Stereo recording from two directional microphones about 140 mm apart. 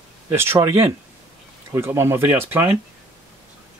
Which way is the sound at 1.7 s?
20° right (ahead or behind).